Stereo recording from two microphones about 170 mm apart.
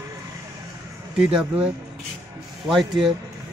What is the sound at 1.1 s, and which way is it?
Speech, 5° right (ahead or behind).